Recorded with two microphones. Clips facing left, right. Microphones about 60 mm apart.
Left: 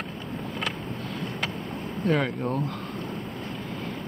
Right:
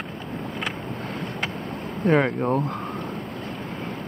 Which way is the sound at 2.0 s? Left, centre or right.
Right.